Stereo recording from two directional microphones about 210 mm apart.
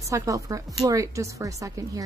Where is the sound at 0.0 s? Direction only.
15° right (ahead or behind).